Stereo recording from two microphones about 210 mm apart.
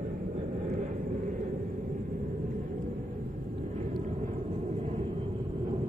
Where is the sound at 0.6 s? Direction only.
40° right (ahead or behind).